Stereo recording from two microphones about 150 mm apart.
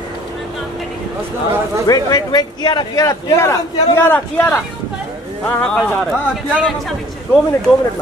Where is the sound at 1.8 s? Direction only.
25° left (ahead or behind); by 7.7 s centre (ahead or behind).